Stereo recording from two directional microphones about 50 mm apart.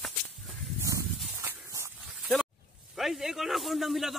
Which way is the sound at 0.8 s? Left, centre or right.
Right.